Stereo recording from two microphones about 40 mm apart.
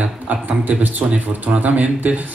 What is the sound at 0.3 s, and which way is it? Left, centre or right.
A man's voice, right.